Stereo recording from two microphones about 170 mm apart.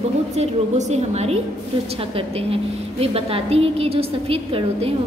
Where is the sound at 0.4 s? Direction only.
40° right (ahead or behind).